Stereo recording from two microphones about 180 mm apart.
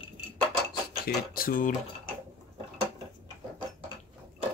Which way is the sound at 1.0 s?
55° left (ahead or behind).